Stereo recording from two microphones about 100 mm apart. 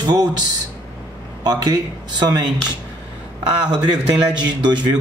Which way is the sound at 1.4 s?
40° right (ahead or behind).